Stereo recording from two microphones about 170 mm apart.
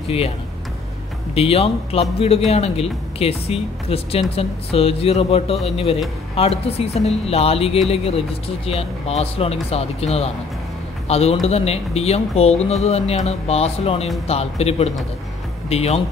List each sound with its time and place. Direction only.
1.3 s speech: 35° left (ahead or behind)